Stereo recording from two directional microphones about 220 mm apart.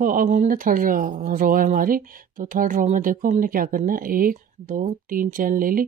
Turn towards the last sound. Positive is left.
turn(degrees=-40)  # may be behind; listen again after turning